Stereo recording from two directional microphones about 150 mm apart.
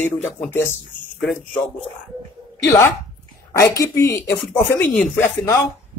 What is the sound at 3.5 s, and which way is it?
Speech, 20° left (ahead or behind).